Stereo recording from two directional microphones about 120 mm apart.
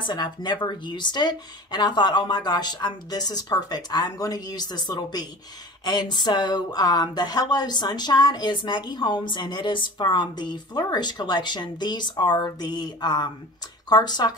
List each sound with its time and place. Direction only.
0.0 s speech: 35° left (ahead or behind)